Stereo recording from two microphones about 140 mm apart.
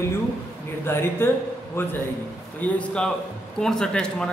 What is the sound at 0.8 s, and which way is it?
Speech, 15° left (ahead or behind).